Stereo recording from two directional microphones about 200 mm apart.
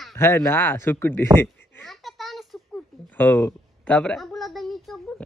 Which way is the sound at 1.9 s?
Centre (ahead or behind).